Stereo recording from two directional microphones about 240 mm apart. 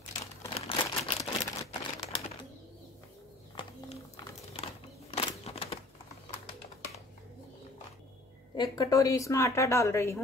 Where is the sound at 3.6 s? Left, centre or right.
Left.